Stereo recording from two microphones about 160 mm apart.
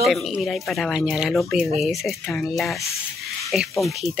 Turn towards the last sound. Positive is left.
turn(degrees=0)  # may be behind; listen again after turning